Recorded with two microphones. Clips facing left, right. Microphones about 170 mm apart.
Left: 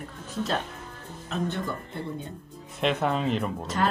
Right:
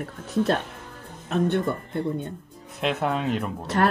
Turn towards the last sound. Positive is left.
turn(degrees=-55)  # may be behind; listen again after turning